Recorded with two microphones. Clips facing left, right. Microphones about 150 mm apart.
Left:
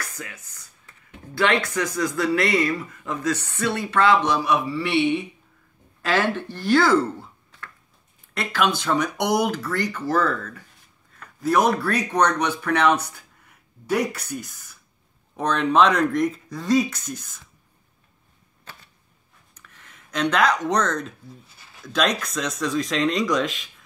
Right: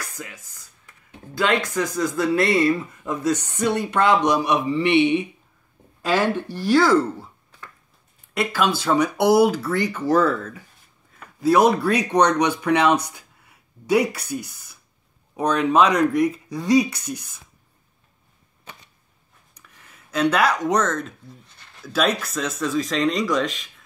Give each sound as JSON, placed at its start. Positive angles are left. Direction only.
{"t": 1.3, "sound": "speech", "side_deg": -15}
{"t": 3.1, "sound": "a man's voice", "side_deg": -10}
{"t": 19.5, "sound": "speech", "side_deg": -10}